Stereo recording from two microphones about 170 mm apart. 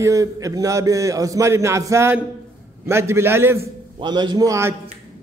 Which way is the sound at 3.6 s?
25° right (ahead or behind).